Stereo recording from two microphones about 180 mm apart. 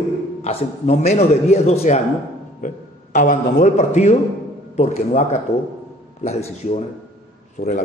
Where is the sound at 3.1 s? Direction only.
45° left (ahead or behind).